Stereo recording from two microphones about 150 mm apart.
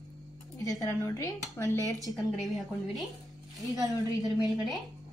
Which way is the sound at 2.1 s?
Centre (ahead or behind).